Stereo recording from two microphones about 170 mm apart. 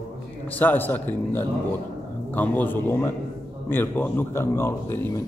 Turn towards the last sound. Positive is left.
turn(degrees=15)  # may be behind; listen again after turning